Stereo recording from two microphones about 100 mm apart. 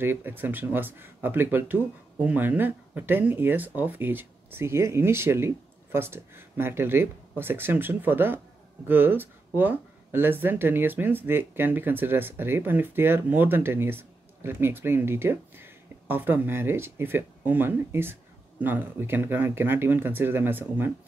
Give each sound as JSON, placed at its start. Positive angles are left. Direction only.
{"t": 0.0, "sound": "speech", "side_deg": -20}